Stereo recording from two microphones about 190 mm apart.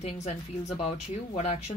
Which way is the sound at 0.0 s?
35° left (ahead or behind).